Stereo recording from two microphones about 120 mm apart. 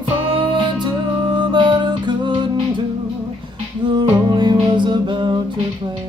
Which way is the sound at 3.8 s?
40° right (ahead or behind).